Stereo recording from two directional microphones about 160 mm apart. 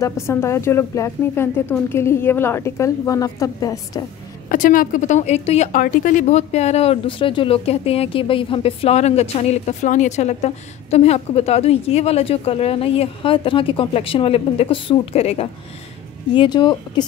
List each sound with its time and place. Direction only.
0.0 s a woman's voice: 15° left (ahead or behind)
4.5 s a woman's voice: 60° left (ahead or behind); by 15.4 s 40° left (ahead or behind)
16.3 s speech: 30° left (ahead or behind)